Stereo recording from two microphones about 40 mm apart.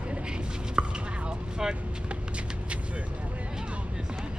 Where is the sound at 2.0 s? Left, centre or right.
Right.